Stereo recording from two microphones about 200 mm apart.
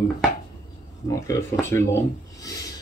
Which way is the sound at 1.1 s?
15° left (ahead or behind).